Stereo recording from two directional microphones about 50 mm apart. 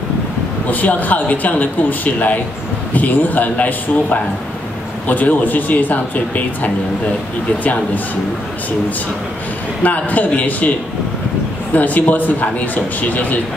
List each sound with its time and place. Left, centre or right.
0.7 s speech: left
9.8 s speech: left
11.7 s speech: left